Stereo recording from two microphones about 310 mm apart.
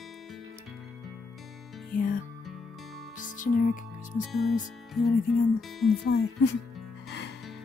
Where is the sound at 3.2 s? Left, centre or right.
Left.